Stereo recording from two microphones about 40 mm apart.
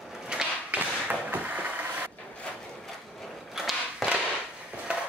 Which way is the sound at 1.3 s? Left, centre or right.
Right.